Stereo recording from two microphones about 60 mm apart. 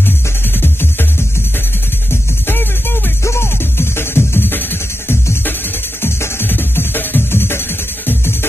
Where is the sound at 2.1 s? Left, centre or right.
Left.